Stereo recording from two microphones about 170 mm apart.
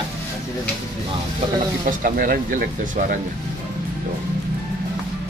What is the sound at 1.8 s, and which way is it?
Speech, 55° right (ahead or behind).